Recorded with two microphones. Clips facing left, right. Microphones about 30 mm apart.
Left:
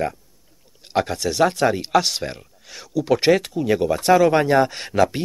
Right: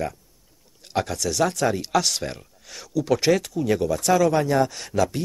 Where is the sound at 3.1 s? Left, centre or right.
Left.